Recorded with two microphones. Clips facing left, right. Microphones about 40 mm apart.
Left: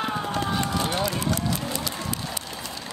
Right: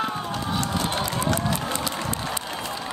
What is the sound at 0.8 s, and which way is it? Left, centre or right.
Run, right.